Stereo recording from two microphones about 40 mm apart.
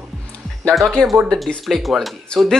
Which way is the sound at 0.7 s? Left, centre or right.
Centre.